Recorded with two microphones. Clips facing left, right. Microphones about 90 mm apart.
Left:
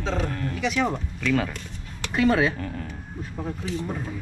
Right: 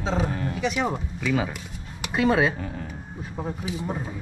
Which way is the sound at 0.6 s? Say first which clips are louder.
Left 2 dB; 5° right (ahead or behind).